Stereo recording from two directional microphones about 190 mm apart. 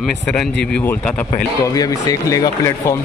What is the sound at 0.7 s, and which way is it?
Speech, 5° left (ahead or behind).